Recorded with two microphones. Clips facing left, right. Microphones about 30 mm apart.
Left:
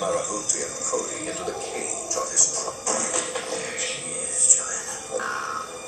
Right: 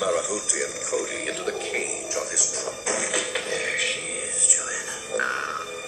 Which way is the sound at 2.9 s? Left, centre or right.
Right.